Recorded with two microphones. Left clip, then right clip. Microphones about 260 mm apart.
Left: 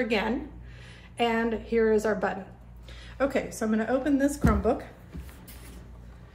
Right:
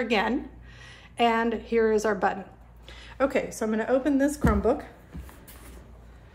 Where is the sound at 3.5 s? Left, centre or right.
Right.